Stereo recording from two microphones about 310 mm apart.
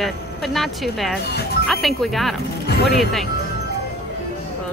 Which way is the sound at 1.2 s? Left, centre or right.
Left.